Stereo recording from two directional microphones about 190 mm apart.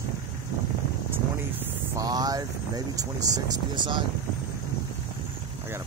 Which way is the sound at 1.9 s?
20° right (ahead or behind).